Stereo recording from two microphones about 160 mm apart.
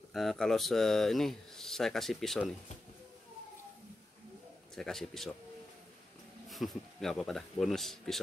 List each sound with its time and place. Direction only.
0.1 s speech: centre (ahead or behind)
4.7 s speech: centre (ahead or behind)
6.5 s speech: centre (ahead or behind)